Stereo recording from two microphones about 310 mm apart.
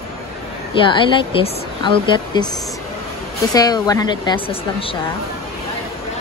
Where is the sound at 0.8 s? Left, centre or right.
Centre.